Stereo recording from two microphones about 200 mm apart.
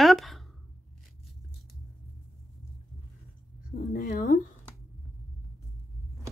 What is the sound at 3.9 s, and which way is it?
Speech, 50° left (ahead or behind).